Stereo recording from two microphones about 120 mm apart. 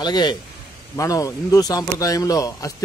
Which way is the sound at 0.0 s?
35° left (ahead or behind).